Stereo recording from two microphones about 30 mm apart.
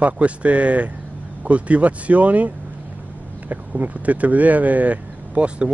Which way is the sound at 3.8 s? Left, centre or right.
Right.